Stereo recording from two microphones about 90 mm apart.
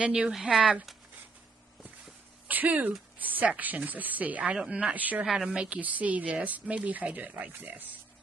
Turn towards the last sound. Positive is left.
turn(degrees=-20)  # may be behind; listen again after turning